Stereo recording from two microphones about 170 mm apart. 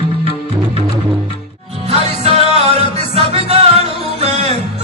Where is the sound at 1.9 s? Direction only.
40° right (ahead or behind).